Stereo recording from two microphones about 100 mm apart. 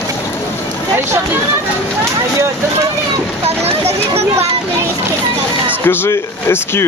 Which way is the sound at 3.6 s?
90° right.